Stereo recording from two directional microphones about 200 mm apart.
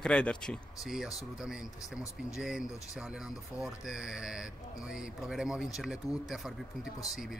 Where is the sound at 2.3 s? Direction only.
Centre (ahead or behind).